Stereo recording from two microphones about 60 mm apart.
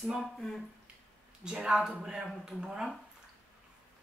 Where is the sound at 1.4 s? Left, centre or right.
Centre.